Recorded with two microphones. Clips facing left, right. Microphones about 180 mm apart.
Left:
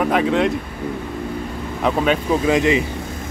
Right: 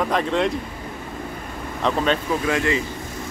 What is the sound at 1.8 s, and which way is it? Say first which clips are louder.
Speech: left 3 dB; 10° left (ahead or behind).